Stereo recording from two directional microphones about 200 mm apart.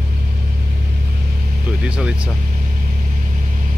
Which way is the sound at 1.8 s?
5° right (ahead or behind).